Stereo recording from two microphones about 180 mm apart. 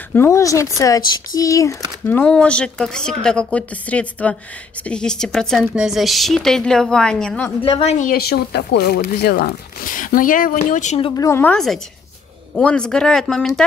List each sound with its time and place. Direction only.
0.1 s a woman's voice: 15° left (ahead or behind)
7.6 s speech: 35° left (ahead or behind)
8.1 s speech: 60° left (ahead or behind); by 11.0 s 40° left (ahead or behind)
11.0 s a woman's voice: 30° left (ahead or behind)
11.2 s a woman's voice: 10° left (ahead or behind)